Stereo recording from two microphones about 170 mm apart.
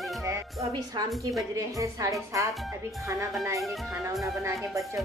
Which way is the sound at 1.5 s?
20° right (ahead or behind).